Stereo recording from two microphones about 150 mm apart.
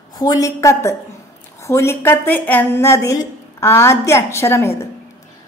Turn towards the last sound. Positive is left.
turn(degrees=15)  # may be behind; listen again after turning